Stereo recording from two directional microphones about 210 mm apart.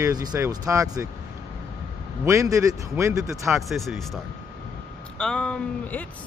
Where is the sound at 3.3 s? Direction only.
Centre (ahead or behind).